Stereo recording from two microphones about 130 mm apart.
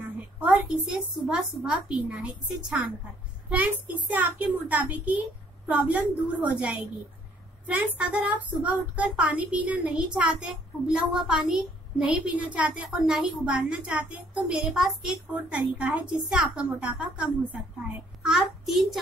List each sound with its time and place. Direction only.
0.2 s a woman's voice: 10° right (ahead or behind)